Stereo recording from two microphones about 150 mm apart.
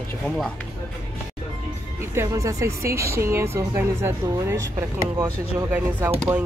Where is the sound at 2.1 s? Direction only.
20° right (ahead or behind).